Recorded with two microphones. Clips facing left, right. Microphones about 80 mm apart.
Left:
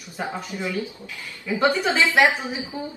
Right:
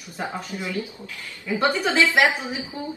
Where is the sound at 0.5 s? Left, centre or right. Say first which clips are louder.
Left 3 dB; left.